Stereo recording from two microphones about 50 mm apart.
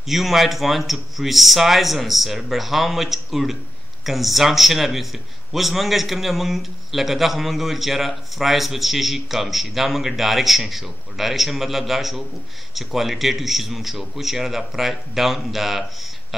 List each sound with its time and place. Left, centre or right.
0.1 s a man's voice: centre